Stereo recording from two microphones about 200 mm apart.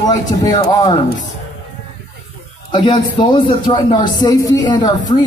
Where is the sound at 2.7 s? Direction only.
20° left (ahead or behind).